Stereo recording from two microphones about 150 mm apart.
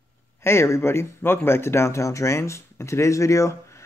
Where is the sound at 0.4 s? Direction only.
15° left (ahead or behind).